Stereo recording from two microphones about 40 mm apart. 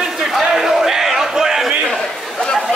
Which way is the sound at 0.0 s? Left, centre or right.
Centre.